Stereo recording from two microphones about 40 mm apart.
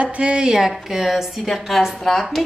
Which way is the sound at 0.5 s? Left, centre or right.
Centre.